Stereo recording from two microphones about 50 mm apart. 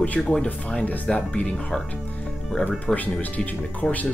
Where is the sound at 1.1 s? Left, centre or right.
Left.